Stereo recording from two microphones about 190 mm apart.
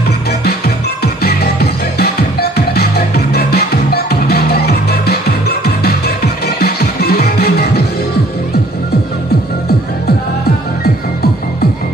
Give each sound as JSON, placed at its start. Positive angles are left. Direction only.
{"t": 0.3, "sound": "music", "side_deg": 55}